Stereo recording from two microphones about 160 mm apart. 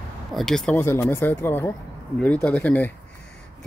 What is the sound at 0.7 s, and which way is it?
Speech, 15° left (ahead or behind).